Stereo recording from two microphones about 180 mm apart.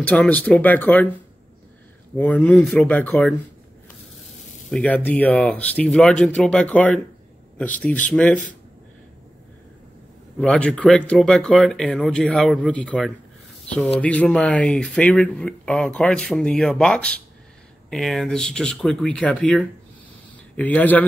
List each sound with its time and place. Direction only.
0.0 s speech: 5° left (ahead or behind)
2.1 s speech: 10° left (ahead or behind)
4.6 s speech: 5° left (ahead or behind)
10.4 s speech: 5° left (ahead or behind)